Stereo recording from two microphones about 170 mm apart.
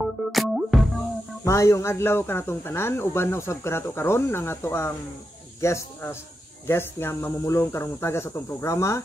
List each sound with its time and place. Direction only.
0.0 s music: centre (ahead or behind)
1.4 s speech: 15° left (ahead or behind)